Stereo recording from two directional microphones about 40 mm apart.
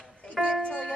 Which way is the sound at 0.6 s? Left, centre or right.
Left.